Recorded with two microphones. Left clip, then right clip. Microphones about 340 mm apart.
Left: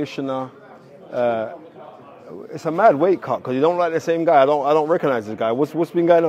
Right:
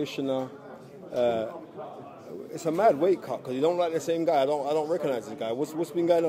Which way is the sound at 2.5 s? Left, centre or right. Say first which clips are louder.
Left 8 dB; left.